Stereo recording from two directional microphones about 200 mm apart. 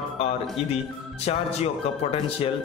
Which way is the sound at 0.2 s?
30° left (ahead or behind).